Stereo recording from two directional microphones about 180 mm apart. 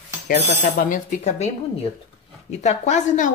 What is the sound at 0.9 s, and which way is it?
Speech, 40° left (ahead or behind).